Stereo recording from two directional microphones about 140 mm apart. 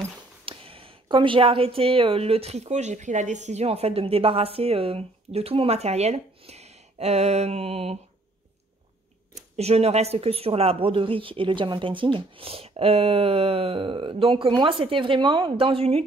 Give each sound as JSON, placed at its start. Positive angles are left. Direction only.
{"t": 0.5, "sound": "a woman's voice", "side_deg": -40}
{"t": 9.3, "sound": "speech", "side_deg": -50}